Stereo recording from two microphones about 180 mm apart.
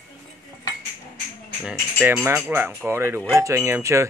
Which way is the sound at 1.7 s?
10° right (ahead or behind).